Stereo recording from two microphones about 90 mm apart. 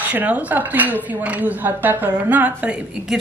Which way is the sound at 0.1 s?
15° right (ahead or behind).